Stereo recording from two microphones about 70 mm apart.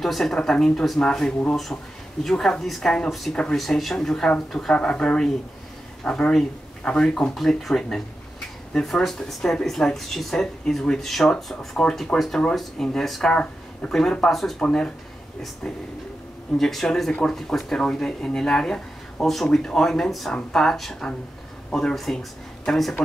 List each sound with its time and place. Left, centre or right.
0.0 s speech: centre
1.7 s speech: left
2.2 s speech: centre
14.3 s speech: centre
16.5 s speech: centre